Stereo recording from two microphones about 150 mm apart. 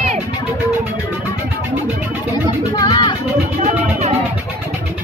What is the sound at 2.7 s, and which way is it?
Music, 30° left (ahead or behind).